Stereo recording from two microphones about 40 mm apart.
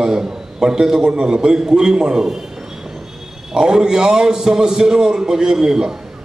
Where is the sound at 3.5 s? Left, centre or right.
Centre.